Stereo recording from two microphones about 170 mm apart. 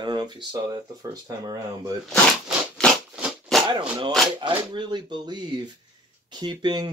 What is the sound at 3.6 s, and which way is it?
Speech, 25° right (ahead or behind).